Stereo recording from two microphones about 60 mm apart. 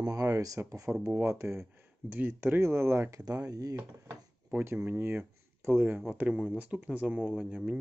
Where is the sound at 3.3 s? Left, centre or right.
Right.